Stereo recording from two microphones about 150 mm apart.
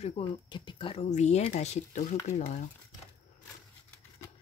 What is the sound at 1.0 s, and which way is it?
Speech, 50° left (ahead or behind).